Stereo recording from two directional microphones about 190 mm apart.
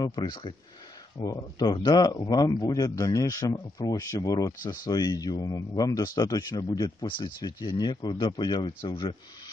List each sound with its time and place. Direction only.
0.0 s speech: 20° left (ahead or behind)